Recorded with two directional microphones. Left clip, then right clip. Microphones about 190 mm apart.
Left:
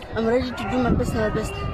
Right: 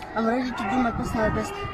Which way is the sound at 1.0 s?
35° left (ahead or behind).